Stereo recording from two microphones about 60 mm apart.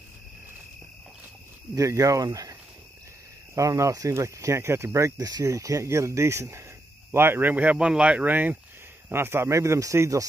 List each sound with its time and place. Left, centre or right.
1.8 s speech: right
3.5 s speech: right
7.1 s speech: right
9.1 s speech: right